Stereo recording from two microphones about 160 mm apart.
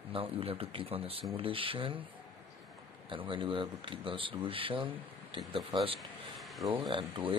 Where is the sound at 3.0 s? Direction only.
30° right (ahead or behind).